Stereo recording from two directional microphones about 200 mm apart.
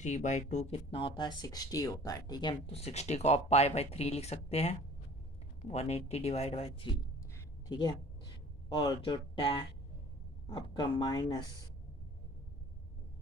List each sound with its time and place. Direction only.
0.0 s speech: 35° left (ahead or behind)
7.3 s a sound: 20° left (ahead or behind)
8.6 s speech: 25° left (ahead or behind)